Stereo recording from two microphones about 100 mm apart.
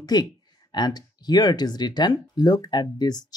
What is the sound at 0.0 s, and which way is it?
Speech, 40° left (ahead or behind).